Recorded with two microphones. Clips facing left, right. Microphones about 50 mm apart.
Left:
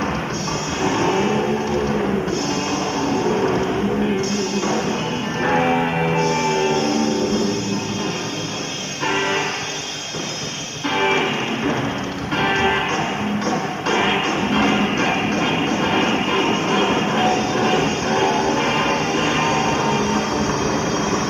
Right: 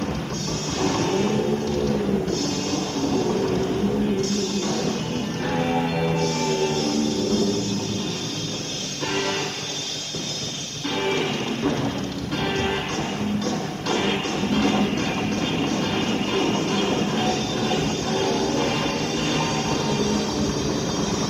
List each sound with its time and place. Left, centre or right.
0.8 s vehicle: left
3.0 s train: left
4.2 s music: left
11.0 s music: left